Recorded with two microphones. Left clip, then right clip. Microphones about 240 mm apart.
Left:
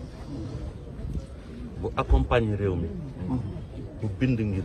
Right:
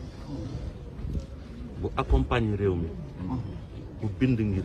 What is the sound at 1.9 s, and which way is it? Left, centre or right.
Speech, centre.